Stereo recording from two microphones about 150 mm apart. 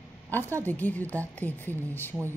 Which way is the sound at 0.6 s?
10° left (ahead or behind).